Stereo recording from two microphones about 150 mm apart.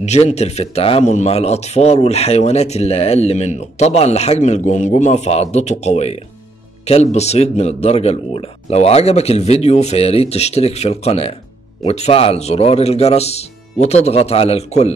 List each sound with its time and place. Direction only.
0.0 s a man's voice: 50° left (ahead or behind)